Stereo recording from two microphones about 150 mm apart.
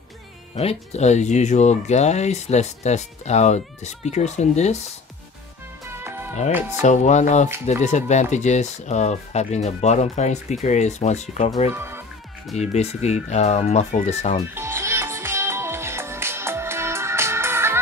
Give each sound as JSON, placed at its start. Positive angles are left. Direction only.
{"t": 0.6, "sound": "speech", "side_deg": 45}
{"t": 5.9, "sound": "music", "side_deg": -15}
{"t": 6.8, "sound": "speech", "side_deg": 50}
{"t": 11.7, "sound": "speech", "side_deg": -15}
{"t": 12.5, "sound": "speech", "side_deg": 45}
{"t": 14.5, "sound": "music", "side_deg": -15}